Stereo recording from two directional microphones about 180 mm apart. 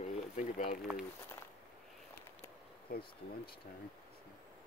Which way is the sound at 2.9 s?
55° left (ahead or behind).